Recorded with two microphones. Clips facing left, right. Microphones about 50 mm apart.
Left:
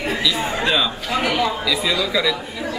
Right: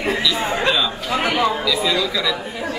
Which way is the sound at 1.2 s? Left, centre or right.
Right.